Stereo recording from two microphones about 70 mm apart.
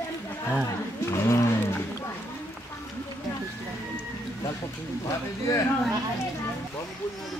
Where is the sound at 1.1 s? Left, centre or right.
Left.